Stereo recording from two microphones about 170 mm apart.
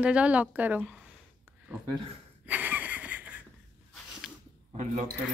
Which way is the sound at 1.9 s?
30° right (ahead or behind).